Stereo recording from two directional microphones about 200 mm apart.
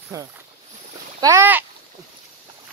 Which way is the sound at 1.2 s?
15° right (ahead or behind).